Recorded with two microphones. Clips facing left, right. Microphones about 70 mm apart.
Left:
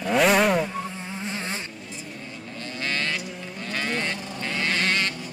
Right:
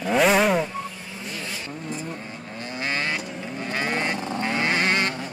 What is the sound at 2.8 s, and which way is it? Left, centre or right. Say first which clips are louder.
Vehicle: right 1 dB; centre.